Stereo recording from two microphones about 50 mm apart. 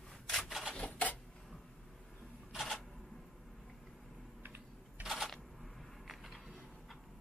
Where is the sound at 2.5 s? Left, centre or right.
Centre.